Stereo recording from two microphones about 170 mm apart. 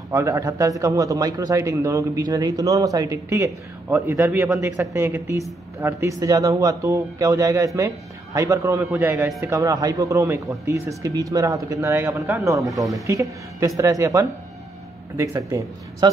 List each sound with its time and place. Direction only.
0.1 s a man's voice: 20° right (ahead or behind)